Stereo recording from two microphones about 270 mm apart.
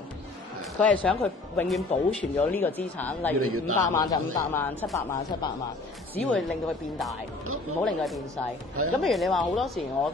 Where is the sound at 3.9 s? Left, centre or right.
Centre.